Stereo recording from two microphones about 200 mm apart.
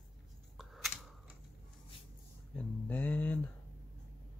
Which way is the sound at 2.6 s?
10° left (ahead or behind).